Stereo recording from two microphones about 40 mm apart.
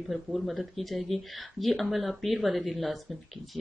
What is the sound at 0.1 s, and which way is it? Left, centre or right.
Speech, centre.